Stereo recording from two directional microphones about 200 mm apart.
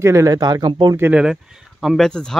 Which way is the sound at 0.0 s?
15° right (ahead or behind).